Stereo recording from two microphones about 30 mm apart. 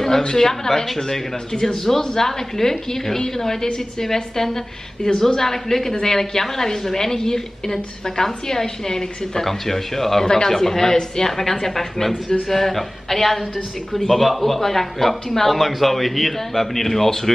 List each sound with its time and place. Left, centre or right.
0.4 s a woman's voice: centre